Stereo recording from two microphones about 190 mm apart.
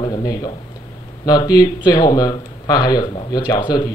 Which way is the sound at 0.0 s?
20° left (ahead or behind).